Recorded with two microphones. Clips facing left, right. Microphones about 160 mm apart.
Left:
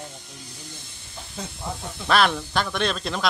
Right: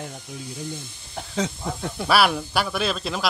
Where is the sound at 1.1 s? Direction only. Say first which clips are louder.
Right 10 dB; 90° right.